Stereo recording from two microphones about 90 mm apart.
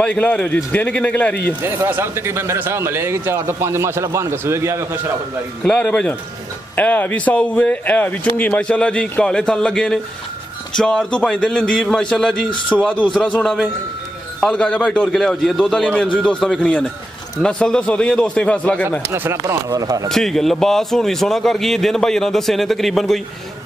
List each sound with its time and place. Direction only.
0.0 s a man's voice: 15° left (ahead or behind)
1.6 s speech: 20° right (ahead or behind)
5.6 s a man's voice: 10° left (ahead or behind)
14.4 s a man's voice: 10° left (ahead or behind)
18.9 s speech: 25° right (ahead or behind)
19.4 s speech: 40° right (ahead or behind)
20.1 s a man's voice: 5° left (ahead or behind)